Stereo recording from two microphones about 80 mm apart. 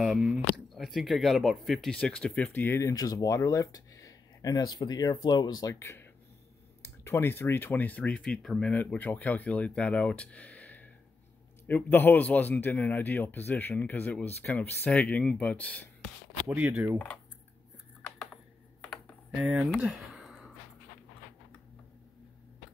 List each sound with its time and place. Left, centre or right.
0.0 s speech: centre; by 2.9 s left
2.9 s speech: left
5.8 s a man's voice: left; by 8.7 s centre
8.7 s a man's voice: left
16.4 s speech: centre
18.2 s computer keyboard: centre
19.3 s speech: centre
19.9 s a sound: centre